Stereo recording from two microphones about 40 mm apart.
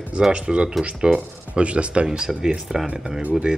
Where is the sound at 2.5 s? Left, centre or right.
Centre.